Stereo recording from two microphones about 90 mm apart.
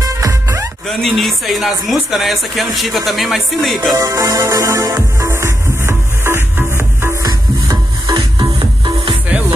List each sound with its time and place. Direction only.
0.0 s music: 35° right (ahead or behind)
0.8 s speech: centre (ahead or behind)
3.9 s music: 40° right (ahead or behind); by 7.2 s 25° right (ahead or behind)
7.2 s music: 45° right (ahead or behind)
8.5 s music: 70° right (ahead or behind)